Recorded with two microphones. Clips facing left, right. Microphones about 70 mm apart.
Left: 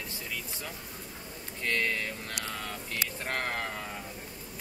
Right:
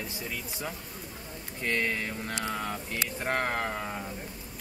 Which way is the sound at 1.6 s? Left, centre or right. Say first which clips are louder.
Right 1 dB; centre.